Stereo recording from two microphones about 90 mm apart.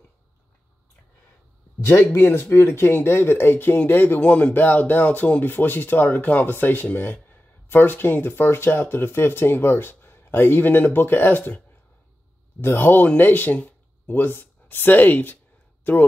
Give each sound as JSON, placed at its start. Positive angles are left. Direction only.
{"t": 2.1, "sound": "speech", "side_deg": 25}
{"t": 12.6, "sound": "speech", "side_deg": 25}